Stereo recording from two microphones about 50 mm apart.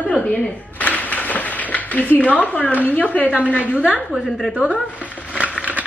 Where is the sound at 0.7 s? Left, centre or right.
Left.